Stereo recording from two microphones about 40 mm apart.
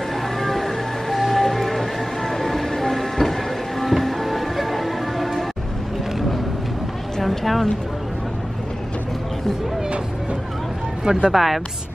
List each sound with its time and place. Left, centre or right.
0.4 s music: centre
7.2 s a sound: centre
11.1 s speech: right
11.3 s a woman's voice: centre